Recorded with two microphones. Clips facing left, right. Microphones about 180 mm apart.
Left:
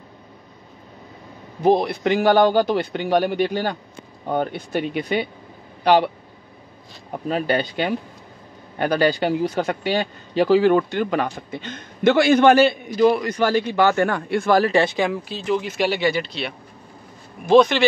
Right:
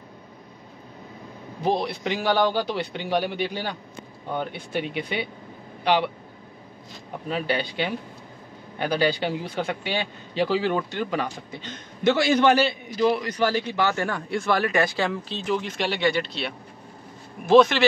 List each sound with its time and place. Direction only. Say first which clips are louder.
1.6 s speech: left 7 dB; 50° left (ahead or behind)
7.2 s speech: left 5 dB; 45° left (ahead or behind); by 14.5 s 60° left (ahead or behind)
14.5 s speech: left 6 dB; 35° left (ahead or behind)
15.0 s speech: left 4 dB; 10° left (ahead or behind)